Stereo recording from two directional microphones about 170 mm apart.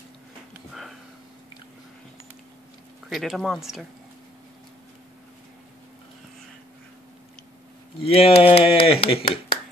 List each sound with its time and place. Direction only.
3.1 s speech: centre (ahead or behind)
8.1 s speech: 35° left (ahead or behind)